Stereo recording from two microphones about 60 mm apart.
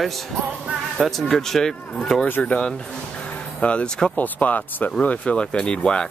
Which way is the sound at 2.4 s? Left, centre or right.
Centre.